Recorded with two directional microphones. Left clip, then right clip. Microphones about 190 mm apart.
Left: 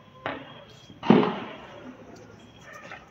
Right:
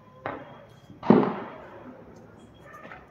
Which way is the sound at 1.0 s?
65° right (ahead or behind).